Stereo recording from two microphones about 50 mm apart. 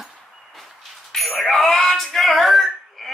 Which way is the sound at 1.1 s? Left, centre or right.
Centre.